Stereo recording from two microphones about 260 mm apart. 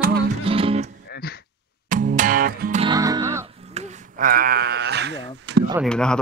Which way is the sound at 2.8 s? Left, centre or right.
Centre.